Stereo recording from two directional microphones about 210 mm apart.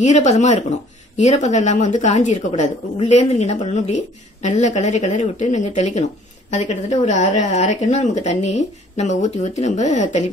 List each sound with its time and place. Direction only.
0.0 s speech: 35° left (ahead or behind)